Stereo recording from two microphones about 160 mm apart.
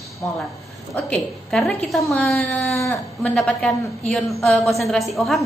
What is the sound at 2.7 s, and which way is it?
Speech, 20° left (ahead or behind).